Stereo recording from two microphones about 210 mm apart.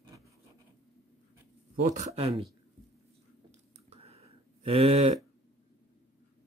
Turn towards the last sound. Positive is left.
turn(degrees=-30)  # may be behind; listen again after turning